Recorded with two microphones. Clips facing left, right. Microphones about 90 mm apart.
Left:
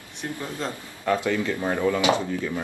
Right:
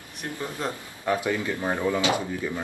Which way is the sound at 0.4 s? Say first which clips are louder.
Right 2 dB; 15° right (ahead or behind).